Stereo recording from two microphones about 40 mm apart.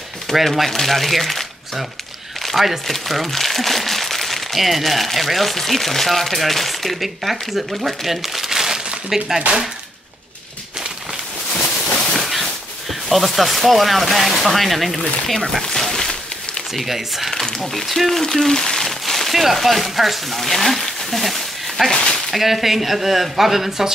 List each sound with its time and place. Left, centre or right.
0.3 s speech: centre
12.1 s a sound: centre
13.1 s speech: centre
15.9 s a sound: centre
16.7 s speech: centre
17.3 s speech: centre